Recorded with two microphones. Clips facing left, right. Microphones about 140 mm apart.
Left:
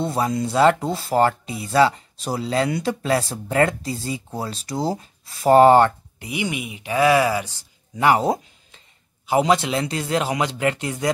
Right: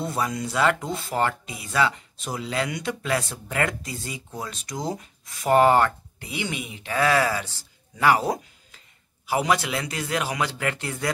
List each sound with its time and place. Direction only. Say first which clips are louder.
0.0 s speech: left 5 dB; 25° left (ahead or behind)
6.1 s speech: left 4 dB; 15° left (ahead or behind)